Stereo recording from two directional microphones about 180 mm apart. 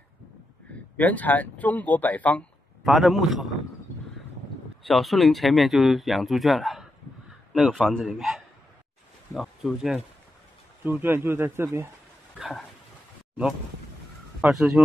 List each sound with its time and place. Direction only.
0.9 s speech: 10° left (ahead or behind)
4.8 s speech: centre (ahead or behind)
12.4 s dog: centre (ahead or behind)
14.4 s speech: centre (ahead or behind)